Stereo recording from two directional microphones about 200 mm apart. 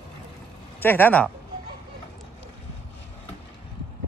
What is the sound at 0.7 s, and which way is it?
Speech, 10° left (ahead or behind).